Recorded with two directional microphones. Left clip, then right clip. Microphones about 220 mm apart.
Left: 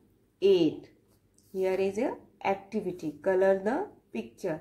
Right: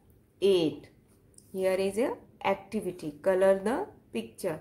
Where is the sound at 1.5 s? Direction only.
25° right (ahead or behind).